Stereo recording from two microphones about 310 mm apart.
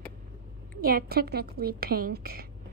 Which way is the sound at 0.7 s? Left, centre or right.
Right.